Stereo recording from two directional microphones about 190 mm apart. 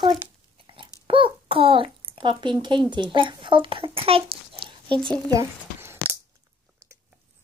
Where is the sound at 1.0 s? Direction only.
30° right (ahead or behind).